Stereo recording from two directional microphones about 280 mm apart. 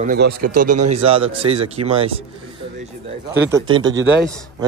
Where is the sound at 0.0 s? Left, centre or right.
Right.